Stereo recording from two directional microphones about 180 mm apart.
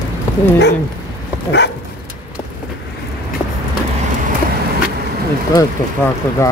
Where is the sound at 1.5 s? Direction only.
70° left (ahead or behind).